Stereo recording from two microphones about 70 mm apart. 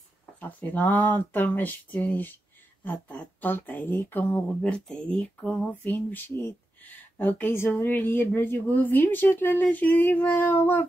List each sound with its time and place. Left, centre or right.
0.4 s speech: left
4.6 s speech: centre; by 10.9 s left